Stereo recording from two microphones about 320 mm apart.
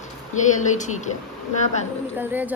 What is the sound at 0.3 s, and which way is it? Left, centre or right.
Speech, left.